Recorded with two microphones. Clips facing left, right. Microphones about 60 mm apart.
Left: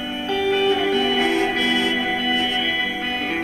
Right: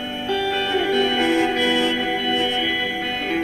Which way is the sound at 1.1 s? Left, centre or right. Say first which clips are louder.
Right 1 dB; right.